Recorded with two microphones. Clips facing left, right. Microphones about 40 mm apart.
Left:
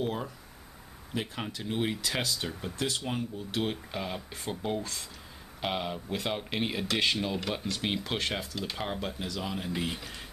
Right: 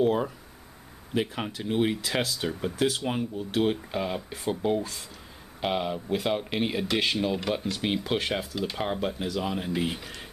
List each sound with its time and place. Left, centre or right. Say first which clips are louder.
0.0 s a sound: right 9 dB; right
1.1 s speech: right 6 dB; centre
3.1 s speech: right 4 dB; right